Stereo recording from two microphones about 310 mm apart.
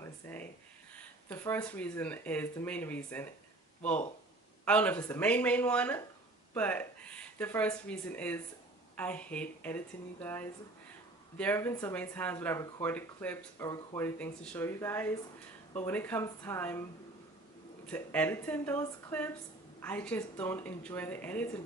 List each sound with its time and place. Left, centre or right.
0.0 s a sound: centre
0.9 s speech: centre
4.6 s speech: centre
17.8 s speech: centre